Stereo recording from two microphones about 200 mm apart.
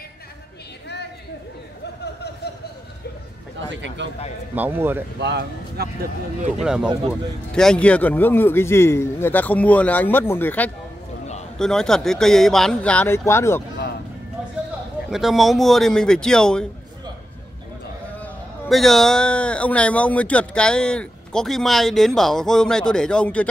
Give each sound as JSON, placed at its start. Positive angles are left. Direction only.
{"t": 3.8, "sound": "speech", "side_deg": -65}
{"t": 4.6, "sound": "speech", "side_deg": -10}
{"t": 5.2, "sound": "speech", "side_deg": -55}
{"t": 6.6, "sound": "a man's voice", "side_deg": -5}
{"t": 15.0, "sound": "speech", "side_deg": 0}
{"t": 18.2, "sound": "speech", "side_deg": 0}